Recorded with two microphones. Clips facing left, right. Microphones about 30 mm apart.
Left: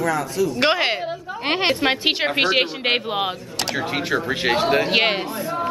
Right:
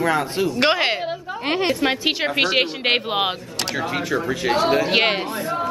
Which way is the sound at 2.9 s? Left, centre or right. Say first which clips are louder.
Right 1 dB; centre.